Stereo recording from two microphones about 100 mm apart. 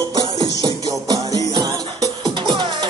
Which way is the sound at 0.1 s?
50° right (ahead or behind).